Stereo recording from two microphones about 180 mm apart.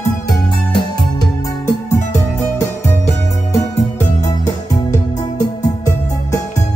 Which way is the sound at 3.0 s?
40° left (ahead or behind).